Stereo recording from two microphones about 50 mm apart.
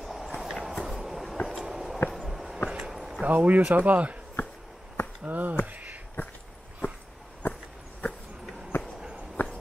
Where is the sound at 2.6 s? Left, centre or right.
Centre.